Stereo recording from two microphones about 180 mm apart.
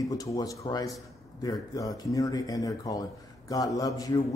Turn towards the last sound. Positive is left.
turn(degrees=20)  # may be behind; listen again after turning